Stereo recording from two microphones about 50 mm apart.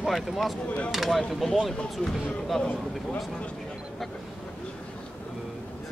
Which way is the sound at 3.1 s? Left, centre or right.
Centre.